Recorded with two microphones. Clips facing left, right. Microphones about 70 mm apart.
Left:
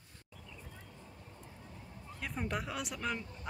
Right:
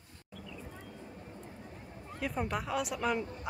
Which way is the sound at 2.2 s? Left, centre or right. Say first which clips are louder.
Right 4 dB; centre.